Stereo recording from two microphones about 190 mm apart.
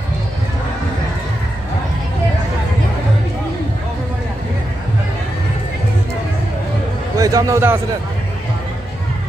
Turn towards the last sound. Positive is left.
turn(degrees=-15)  # may be behind; listen again after turning